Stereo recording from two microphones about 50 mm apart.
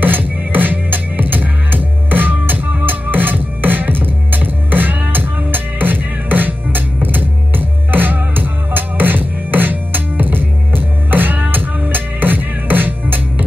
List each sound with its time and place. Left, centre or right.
0.0 s music: right